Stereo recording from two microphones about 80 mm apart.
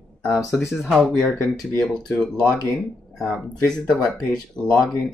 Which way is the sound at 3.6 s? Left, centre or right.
Centre.